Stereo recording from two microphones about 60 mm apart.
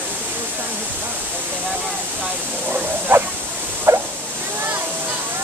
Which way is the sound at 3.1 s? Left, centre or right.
Right.